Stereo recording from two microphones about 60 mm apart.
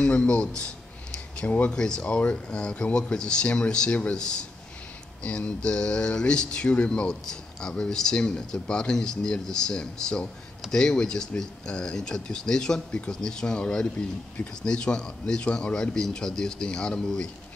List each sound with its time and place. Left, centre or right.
0.0 s speech: centre